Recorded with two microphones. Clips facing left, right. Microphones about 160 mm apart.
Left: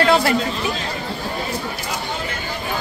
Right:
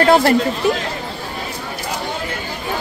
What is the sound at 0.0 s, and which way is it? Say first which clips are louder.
Chatter: right 4 dB; 50° right (ahead or behind).